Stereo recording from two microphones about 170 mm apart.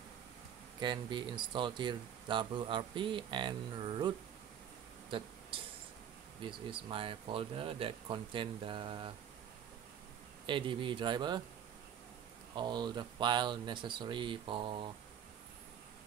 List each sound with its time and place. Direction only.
0.7 s speech: 25° right (ahead or behind)
5.1 s speech: 30° right (ahead or behind)
6.4 s speech: 30° right (ahead or behind)
10.4 s speech: 30° right (ahead or behind)
12.5 s speech: 25° right (ahead or behind)